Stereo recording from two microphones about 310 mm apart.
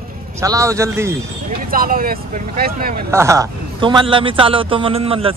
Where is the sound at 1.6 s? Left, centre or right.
Right.